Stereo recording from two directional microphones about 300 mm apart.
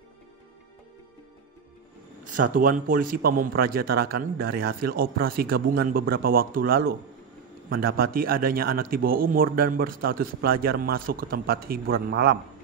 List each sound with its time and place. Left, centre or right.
2.2 s a man's voice: right